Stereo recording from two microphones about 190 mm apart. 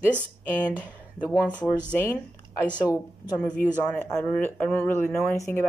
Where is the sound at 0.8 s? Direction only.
10° left (ahead or behind).